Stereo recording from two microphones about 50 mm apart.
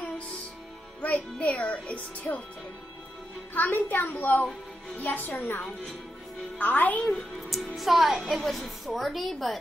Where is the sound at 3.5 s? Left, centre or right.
Left.